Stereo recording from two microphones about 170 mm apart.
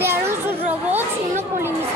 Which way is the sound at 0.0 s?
15° right (ahead or behind).